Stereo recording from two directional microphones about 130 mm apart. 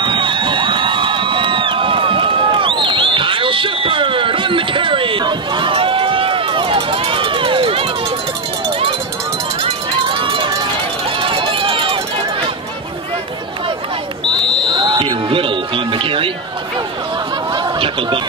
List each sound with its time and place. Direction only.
0.0 s crowd: 40° right (ahead or behind)
9.6 s run: 45° right (ahead or behind)
14.7 s smoke detector: 35° right (ahead or behind)
17.5 s a sound: 40° right (ahead or behind)